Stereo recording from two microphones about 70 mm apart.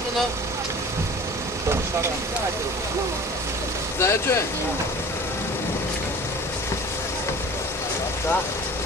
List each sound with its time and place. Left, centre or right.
4.0 s speech: left